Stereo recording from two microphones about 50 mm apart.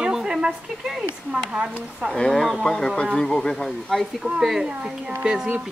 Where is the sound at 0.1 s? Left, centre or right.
Centre.